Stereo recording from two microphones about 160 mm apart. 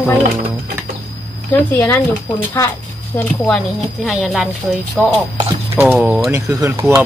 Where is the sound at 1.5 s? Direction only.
10° left (ahead or behind).